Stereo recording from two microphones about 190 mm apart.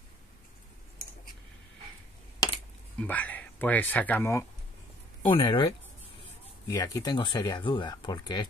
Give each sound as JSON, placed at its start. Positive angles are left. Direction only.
{"t": 2.4, "sound": "a sound", "side_deg": 20}
{"t": 3.0, "sound": "speech", "side_deg": 10}
{"t": 5.3, "sound": "speech", "side_deg": 25}